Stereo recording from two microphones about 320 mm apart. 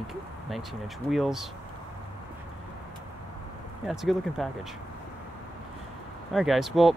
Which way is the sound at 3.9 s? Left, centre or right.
Centre.